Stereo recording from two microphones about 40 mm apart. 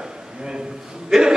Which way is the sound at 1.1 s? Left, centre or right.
Centre.